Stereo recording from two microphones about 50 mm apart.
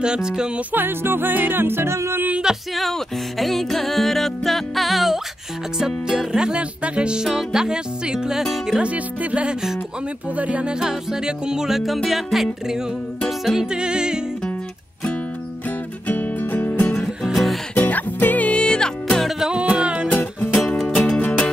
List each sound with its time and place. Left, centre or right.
0.0 s music: centre
0.7 s music: right
2.7 s music: centre
7.2 s music: centre
8.8 s music: right; by 12.4 s centre
13.5 s music: centre
16.1 s music: left
17.0 s music: centre
17.7 s music: left
18.6 s music: centre
19.5 s music: centre
20.1 s music: left
20.6 s music: centre